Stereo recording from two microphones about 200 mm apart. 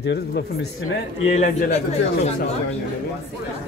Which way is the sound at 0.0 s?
55° left (ahead or behind).